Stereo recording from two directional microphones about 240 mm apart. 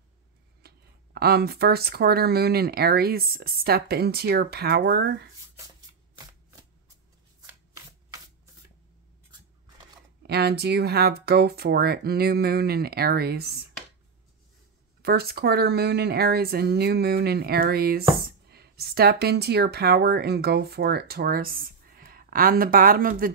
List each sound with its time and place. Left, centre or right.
0.6 s speech: right
10.2 s speech: right
15.0 s speech: right